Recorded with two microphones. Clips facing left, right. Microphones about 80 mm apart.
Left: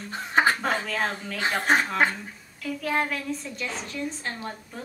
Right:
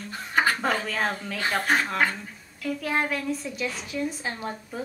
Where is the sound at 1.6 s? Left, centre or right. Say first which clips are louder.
Left 3 dB; left.